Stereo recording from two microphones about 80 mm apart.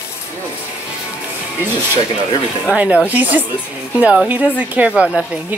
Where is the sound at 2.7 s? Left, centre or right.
Centre.